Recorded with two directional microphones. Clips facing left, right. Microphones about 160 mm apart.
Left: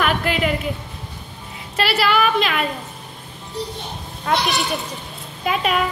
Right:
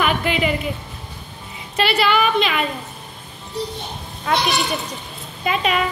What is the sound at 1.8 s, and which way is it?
Speech, 5° left (ahead or behind).